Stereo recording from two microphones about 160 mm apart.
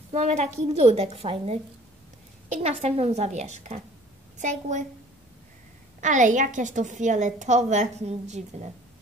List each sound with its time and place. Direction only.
0.1 s a woman's voice: 45° right (ahead or behind)
5.9 s a woman's voice: 50° right (ahead or behind)